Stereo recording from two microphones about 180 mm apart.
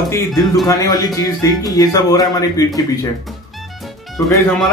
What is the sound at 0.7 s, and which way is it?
Speech, 20° left (ahead or behind).